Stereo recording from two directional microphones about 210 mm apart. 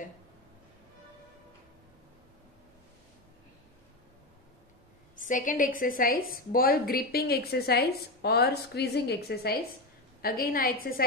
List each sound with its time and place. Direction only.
5.2 s a woman's voice: 40° left (ahead or behind)